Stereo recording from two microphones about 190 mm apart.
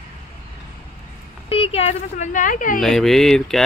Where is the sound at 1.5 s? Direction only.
30° left (ahead or behind).